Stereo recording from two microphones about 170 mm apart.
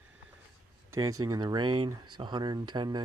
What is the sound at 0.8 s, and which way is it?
Speech, 20° right (ahead or behind).